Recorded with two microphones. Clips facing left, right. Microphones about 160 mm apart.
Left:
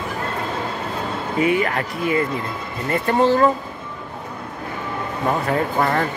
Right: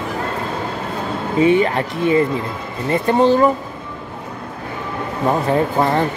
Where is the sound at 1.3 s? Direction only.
25° right (ahead or behind).